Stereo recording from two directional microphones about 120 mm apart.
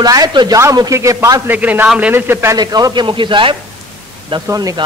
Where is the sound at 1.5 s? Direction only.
15° right (ahead or behind).